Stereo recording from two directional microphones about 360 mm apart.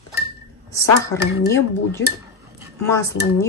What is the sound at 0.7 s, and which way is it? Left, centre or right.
Speech, centre.